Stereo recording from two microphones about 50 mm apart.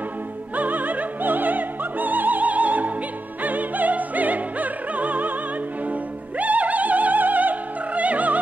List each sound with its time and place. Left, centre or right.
0.6 s music: right
3.4 s opera: right
5.9 s music: right